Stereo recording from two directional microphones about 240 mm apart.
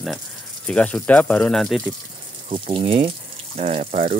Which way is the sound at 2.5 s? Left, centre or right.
Right.